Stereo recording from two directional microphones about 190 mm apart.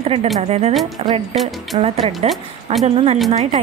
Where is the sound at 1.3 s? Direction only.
Centre (ahead or behind).